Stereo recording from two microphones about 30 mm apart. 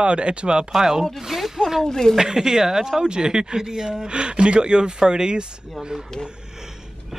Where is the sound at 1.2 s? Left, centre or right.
Centre.